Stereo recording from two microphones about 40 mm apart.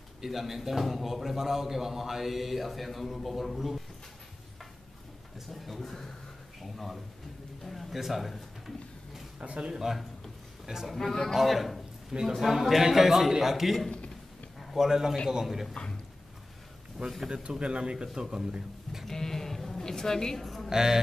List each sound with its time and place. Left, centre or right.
0.2 s speech: centre
5.5 s speech: centre
6.6 s a sound: centre
9.4 s speech: right
9.8 s a man's voice: centre
10.9 s speech: centre
12.1 s a man's voice: centre
15.7 s a sound: left
17.3 s speech: right
19.0 s speech: centre
20.4 s a sound: centre
20.7 s a man's voice: centre